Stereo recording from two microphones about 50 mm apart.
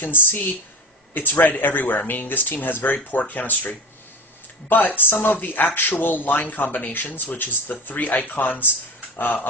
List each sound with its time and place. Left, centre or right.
0.0 s speech: left